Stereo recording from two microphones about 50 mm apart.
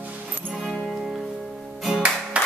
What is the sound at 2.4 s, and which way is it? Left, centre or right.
Music, right.